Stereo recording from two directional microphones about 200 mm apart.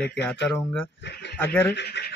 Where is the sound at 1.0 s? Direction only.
55° left (ahead or behind).